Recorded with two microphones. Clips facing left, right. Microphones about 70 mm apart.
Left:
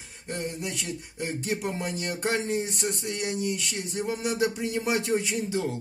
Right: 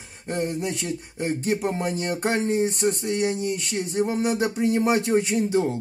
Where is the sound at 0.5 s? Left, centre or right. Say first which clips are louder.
Right 6 dB; right.